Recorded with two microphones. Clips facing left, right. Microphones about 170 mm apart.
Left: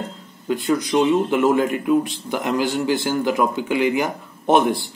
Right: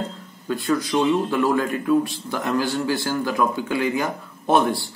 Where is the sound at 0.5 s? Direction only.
20° left (ahead or behind).